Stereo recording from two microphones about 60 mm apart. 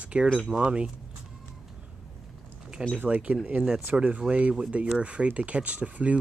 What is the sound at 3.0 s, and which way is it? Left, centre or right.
Speech, right.